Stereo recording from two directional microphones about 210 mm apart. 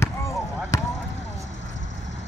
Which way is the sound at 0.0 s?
15° left (ahead or behind).